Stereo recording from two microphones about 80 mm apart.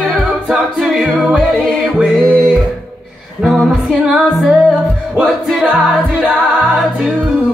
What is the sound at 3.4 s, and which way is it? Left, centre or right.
Music, centre.